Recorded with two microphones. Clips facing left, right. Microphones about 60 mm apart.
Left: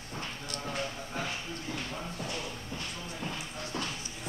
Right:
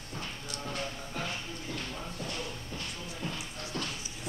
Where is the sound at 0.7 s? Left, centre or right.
Centre.